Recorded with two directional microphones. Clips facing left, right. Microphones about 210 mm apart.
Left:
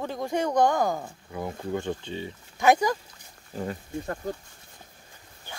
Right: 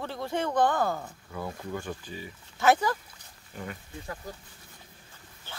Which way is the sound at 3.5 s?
35° left (ahead or behind).